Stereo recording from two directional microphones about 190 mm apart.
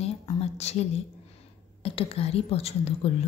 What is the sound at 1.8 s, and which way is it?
A woman's voice, 30° left (ahead or behind).